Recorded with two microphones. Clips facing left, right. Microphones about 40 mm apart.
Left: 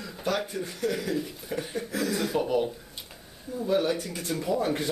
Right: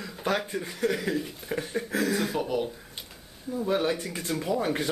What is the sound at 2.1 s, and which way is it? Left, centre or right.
Speech, centre.